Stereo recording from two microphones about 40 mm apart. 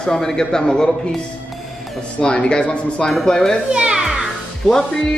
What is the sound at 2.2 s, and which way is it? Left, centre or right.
Speech, left.